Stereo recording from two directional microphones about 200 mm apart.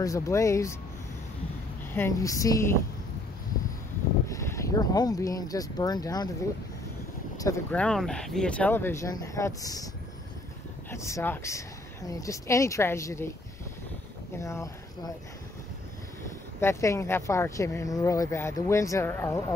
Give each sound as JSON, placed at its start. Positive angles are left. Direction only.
{"t": 0.0, "sound": "speech", "side_deg": 15}
{"t": 2.0, "sound": "speech", "side_deg": 15}
{"t": 4.3, "sound": "speech", "side_deg": 15}
{"t": 7.3, "sound": "speech", "side_deg": 15}
{"t": 7.7, "sound": "speech", "side_deg": 5}
{"t": 10.9, "sound": "speech", "side_deg": 15}
{"t": 14.3, "sound": "speech", "side_deg": 15}
{"t": 16.5, "sound": "speech", "side_deg": 15}